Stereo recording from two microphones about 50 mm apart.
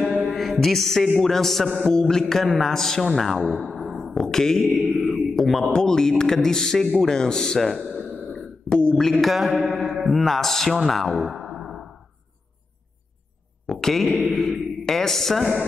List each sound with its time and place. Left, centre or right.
0.3 s music: centre
1.8 s a man's voice: centre
3.9 s music: centre
4.9 s mantra: centre
5.7 s a man's voice: centre
8.3 s a sound: centre
8.8 s a man's voice: centre
9.1 s speech: centre
11.3 s music: centre
13.7 s speech: centre
14.1 s speech: centre
14.5 s speech: centre